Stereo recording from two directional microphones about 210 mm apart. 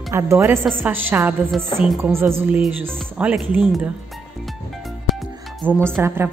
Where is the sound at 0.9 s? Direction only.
10° right (ahead or behind).